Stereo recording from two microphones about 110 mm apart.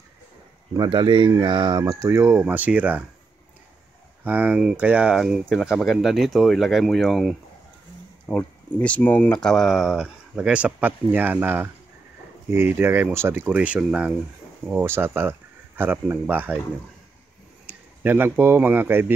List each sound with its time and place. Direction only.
0.8 s speech: 50° right (ahead or behind); by 2.4 s 25° right (ahead or behind)
2.4 s speech: 15° right (ahead or behind)
4.2 s speech: 15° right (ahead or behind)
8.3 s speech: 15° left (ahead or behind); by 14.1 s 10° right (ahead or behind)
14.7 s speech: 20° right (ahead or behind)
17.6 s speech: 20° right (ahead or behind)